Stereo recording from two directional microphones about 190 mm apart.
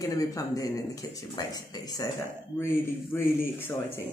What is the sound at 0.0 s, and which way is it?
Speech, 20° left (ahead or behind).